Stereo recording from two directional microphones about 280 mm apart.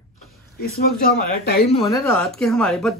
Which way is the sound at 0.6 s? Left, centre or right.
Left.